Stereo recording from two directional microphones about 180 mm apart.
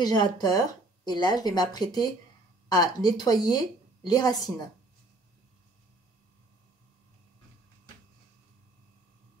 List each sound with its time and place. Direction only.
0.0 s speech: 20° left (ahead or behind)